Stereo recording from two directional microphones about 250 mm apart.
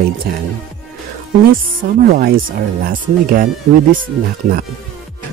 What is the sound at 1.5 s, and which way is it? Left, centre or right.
Speech, right.